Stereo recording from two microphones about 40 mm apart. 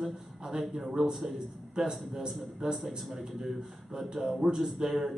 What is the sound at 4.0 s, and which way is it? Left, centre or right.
Speech, centre.